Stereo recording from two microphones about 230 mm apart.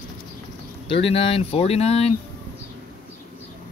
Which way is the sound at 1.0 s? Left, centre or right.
Left.